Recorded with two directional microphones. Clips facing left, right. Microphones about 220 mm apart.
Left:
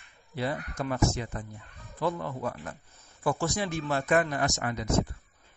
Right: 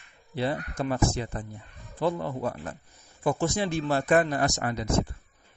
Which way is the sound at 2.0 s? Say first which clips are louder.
Right 3 dB; 30° right (ahead or behind).